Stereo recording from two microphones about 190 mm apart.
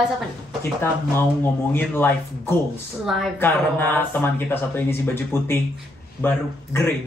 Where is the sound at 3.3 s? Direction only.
10° left (ahead or behind).